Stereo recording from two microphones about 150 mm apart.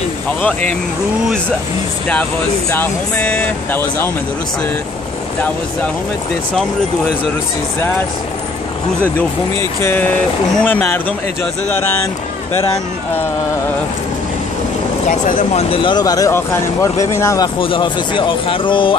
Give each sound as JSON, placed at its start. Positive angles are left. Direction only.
{"t": 0.4, "sound": "speech", "side_deg": 10}
{"t": 2.7, "sound": "speech", "side_deg": 10}
{"t": 9.8, "sound": "speech", "side_deg": 15}
{"t": 15.0, "sound": "speech", "side_deg": 65}
{"t": 15.5, "sound": "speech", "side_deg": 35}
{"t": 17.6, "sound": "speech", "side_deg": 35}